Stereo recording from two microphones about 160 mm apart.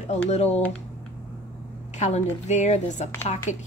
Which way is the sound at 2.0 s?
45° left (ahead or behind).